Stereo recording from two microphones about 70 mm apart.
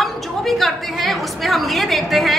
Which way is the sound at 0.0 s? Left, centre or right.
Centre.